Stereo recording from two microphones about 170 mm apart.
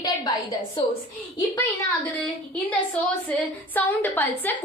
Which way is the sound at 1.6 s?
10° left (ahead or behind).